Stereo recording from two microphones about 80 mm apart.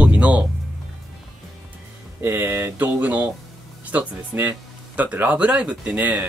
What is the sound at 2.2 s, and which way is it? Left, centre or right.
Speech, right.